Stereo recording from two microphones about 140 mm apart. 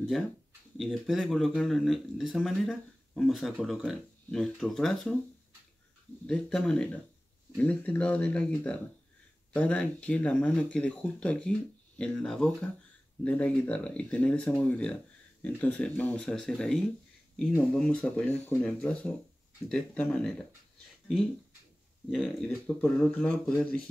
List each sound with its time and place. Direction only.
0.7 s speech: centre (ahead or behind)
6.2 s speech: 5° left (ahead or behind)
22.1 s speech: centre (ahead or behind)